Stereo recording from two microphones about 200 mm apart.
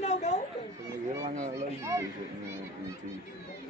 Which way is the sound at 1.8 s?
15° right (ahead or behind).